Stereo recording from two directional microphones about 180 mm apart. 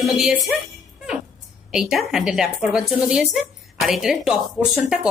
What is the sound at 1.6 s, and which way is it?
Speech, 5° right (ahead or behind).